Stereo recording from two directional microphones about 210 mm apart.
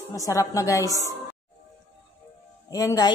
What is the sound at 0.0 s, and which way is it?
A woman's voice, 15° left (ahead or behind).